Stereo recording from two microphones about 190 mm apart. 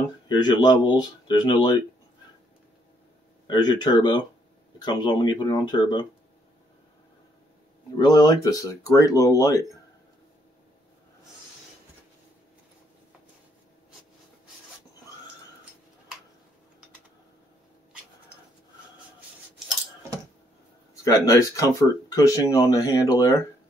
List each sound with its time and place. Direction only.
0.3 s speech: 20° left (ahead or behind)
3.4 s speech: 20° left (ahead or behind)
7.9 s speech: 20° left (ahead or behind)
20.9 s speech: 15° left (ahead or behind)